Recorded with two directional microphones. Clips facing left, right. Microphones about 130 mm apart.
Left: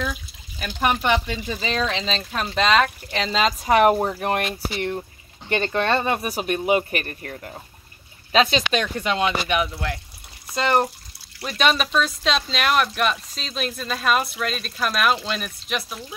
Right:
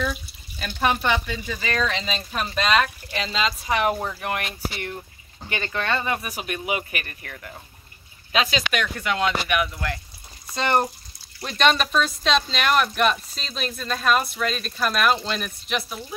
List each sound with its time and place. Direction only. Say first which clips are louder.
0.6 s speech: left 1 dB; 15° left (ahead or behind)
2.0 s speech: left 2 dB; 5° right (ahead or behind)
3.3 s speech: left 5 dB; 45° left (ahead or behind); by 9.9 s 20° left (ahead or behind)
10.5 s speech: left 2 dB; 5° left (ahead or behind)